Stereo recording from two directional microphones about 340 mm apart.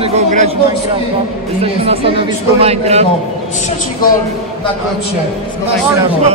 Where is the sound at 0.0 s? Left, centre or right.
Centre.